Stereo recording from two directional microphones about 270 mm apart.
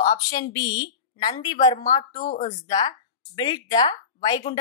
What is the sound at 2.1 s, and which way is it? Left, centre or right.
Speech, left.